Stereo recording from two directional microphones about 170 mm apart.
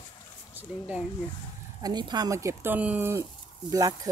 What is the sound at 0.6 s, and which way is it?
Speech, 10° right (ahead or behind).